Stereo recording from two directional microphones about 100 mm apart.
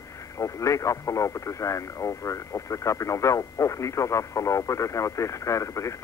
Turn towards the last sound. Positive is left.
turn(degrees=30)  # may be behind; listen again after turning